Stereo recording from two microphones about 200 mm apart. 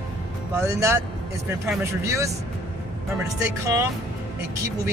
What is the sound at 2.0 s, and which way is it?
Speech, 15° right (ahead or behind).